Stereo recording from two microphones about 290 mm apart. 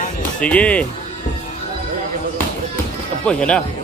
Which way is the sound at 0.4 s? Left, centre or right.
Centre.